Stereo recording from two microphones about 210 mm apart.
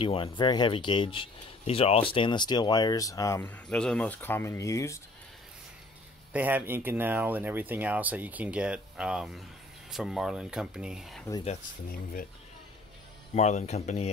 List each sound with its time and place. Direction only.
0.0 s speech: 25° left (ahead or behind)
6.3 s speech: 10° right (ahead or behind)
13.3 s speech: 30° left (ahead or behind)